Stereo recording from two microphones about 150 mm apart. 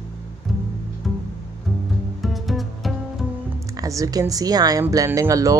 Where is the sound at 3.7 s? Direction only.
20° right (ahead or behind).